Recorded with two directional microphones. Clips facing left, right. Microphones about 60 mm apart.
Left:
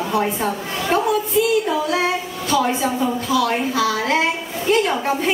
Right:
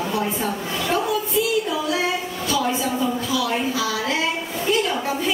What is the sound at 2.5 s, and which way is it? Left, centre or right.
A woman's voice, left.